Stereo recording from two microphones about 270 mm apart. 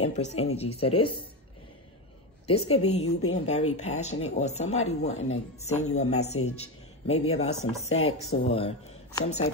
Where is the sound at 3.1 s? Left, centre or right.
Left.